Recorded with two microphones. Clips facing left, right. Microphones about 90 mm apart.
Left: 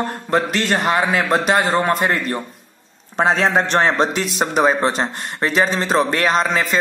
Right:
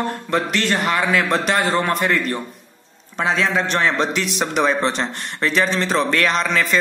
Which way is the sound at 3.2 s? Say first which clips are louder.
Left 3 dB; 45° left (ahead or behind).